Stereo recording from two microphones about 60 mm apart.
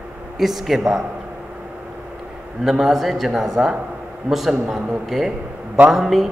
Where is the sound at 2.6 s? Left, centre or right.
Centre.